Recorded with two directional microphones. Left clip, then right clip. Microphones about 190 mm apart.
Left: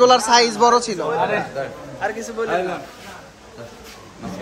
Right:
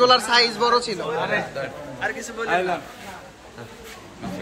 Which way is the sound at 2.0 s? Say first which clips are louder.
Left 4 dB; 40° left (ahead or behind).